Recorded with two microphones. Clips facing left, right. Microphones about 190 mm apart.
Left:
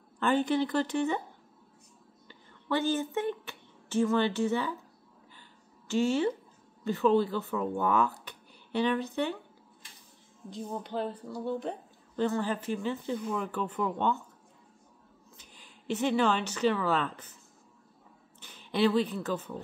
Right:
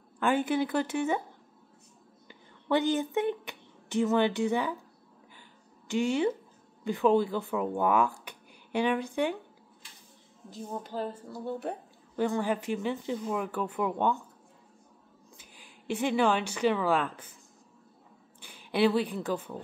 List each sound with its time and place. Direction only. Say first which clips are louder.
0.2 s speech: even; 10° right (ahead or behind)
2.2 s a woman's voice: right 3 dB; 15° right (ahead or behind)
5.9 s speech: even; 15° right (ahead or behind)
10.9 s speech: left 1 dB; 5° right (ahead or behind)
12.2 s speech: right 1 dB; 15° right (ahead or behind)
15.3 s speech: right 2 dB; 10° right (ahead or behind)
18.4 s a woman's voice: right 1 dB; 10° right (ahead or behind)